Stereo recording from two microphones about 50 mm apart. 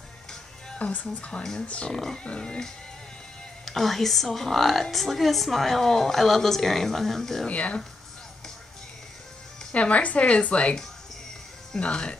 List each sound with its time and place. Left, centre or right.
0.7 s a woman's voice: left
1.4 s speech: centre
2.2 s a woman's voice: left
3.6 s a woman's voice: centre
7.4 s a woman's voice: left
9.8 s a woman's voice: left
11.7 s a woman's voice: centre